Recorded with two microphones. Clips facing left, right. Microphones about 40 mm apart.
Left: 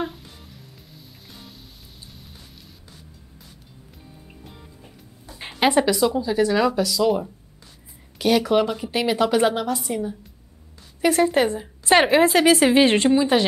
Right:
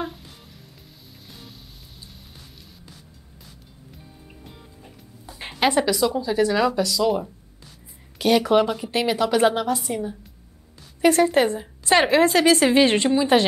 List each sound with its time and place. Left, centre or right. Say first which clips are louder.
5.3 s a sound: right 1 dB; centre
5.6 s speech: left 2 dB; centre
5.9 s a woman's voice: left 1 dB; centre
11.8 s a woman's voice: left 1 dB; centre